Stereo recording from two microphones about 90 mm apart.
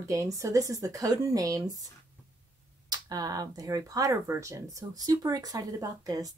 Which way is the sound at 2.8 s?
45° right (ahead or behind).